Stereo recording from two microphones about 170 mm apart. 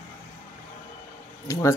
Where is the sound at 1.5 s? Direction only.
20° left (ahead or behind).